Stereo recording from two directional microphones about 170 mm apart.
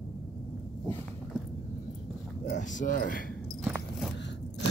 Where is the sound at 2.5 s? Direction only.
45° left (ahead or behind).